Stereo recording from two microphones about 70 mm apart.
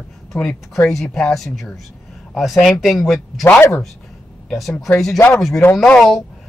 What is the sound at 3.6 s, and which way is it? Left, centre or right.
Speech, left.